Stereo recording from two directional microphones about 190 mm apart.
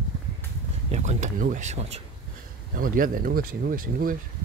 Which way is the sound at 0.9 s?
40° right (ahead or behind).